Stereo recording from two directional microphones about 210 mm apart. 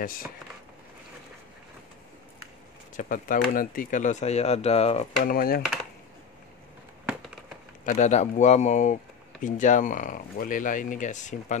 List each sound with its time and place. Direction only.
3.0 s speech: 40° left (ahead or behind)
5.2 s speech: 45° left (ahead or behind)
7.8 s speech: 35° left (ahead or behind)